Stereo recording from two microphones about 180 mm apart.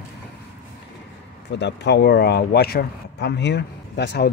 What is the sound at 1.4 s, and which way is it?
Speech, 75° left (ahead or behind).